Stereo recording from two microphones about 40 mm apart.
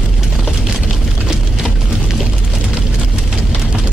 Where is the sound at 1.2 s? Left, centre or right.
Centre.